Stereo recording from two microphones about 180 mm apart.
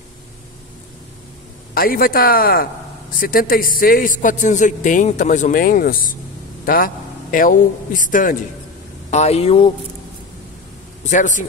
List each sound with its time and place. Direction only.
1.7 s a man's voice: 55° left (ahead or behind)
9.1 s speech: 35° left (ahead or behind)
11.1 s a man's voice: 45° left (ahead or behind)